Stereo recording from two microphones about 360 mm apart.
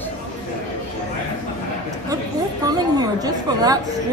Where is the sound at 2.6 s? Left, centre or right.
Centre.